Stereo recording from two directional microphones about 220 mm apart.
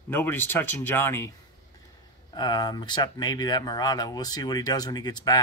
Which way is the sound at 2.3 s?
20° left (ahead or behind).